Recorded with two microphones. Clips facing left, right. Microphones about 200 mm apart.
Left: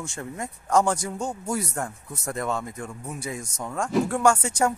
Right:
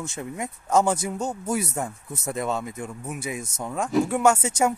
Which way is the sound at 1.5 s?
20° right (ahead or behind).